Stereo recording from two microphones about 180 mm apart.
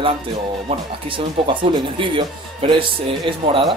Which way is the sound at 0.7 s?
30° right (ahead or behind).